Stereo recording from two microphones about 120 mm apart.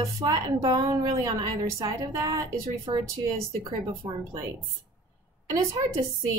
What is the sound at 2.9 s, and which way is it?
Speech, 40° right (ahead or behind).